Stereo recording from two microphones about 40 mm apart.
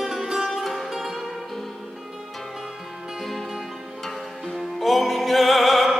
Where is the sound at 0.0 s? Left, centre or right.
Centre.